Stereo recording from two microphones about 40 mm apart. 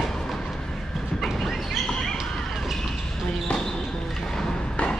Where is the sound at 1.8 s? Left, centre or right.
Centre.